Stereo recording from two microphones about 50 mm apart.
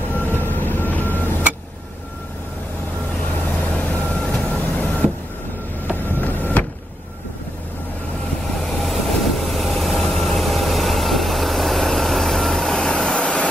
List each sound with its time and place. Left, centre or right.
0.4 s vehicle: left
3.6 s vehicle: left
6.0 s vehicle: left
8.6 s train: centre